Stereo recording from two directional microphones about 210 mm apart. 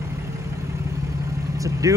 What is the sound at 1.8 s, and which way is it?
Speech, 15° right (ahead or behind).